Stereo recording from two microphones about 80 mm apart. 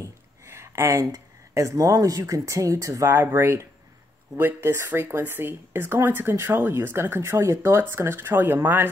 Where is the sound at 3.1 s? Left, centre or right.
Right.